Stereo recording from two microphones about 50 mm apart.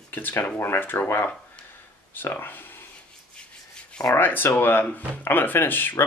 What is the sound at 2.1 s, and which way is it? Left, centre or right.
Speech, left.